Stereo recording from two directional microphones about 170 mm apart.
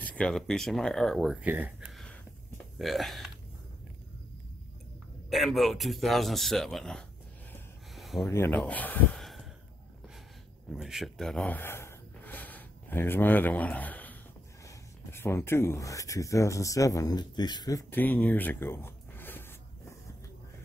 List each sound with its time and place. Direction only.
0.0 s a man's voice: 5° left (ahead or behind)
1.9 s a sound: centre (ahead or behind)
2.8 s a man's voice: centre (ahead or behind)
5.3 s a man's voice: centre (ahead or behind)
7.9 s a sound: centre (ahead or behind)
8.3 s speech: 10° left (ahead or behind)
10.7 s speech: centre (ahead or behind)